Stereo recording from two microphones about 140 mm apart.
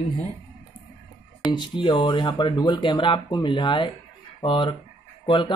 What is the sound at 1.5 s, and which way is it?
Speech, 35° left (ahead or behind).